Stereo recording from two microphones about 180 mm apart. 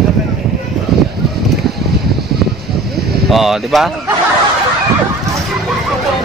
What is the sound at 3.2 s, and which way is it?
Speech, centre (ahead or behind).